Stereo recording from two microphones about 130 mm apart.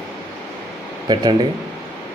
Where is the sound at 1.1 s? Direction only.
35° right (ahead or behind).